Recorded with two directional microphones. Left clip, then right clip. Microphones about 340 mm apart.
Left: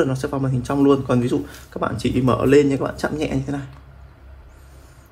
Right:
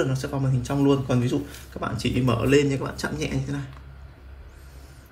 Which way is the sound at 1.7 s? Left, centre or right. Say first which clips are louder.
Left 7 dB; left.